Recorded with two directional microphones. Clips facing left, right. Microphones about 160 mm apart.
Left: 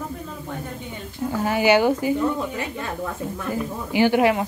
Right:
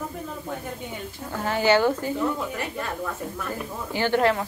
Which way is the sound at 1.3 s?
10° left (ahead or behind).